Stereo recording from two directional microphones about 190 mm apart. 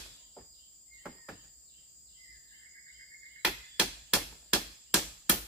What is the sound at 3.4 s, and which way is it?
Chop, 5° right (ahead or behind).